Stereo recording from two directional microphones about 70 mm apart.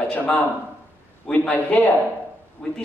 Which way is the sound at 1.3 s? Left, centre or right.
Centre.